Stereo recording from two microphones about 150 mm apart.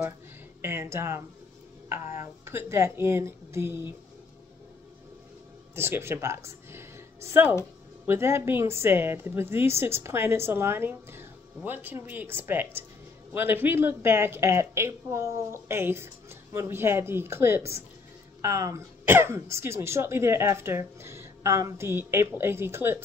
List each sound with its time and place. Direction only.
0.6 s a woman's voice: 15° right (ahead or behind)
2.4 s a woman's voice: 15° right (ahead or behind)
5.8 s a woman's voice: 15° right (ahead or behind)